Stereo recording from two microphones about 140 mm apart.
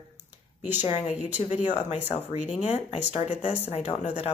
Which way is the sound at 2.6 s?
50° left (ahead or behind).